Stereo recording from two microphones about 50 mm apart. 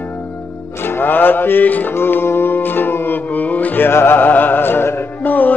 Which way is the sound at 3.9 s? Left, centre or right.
Left.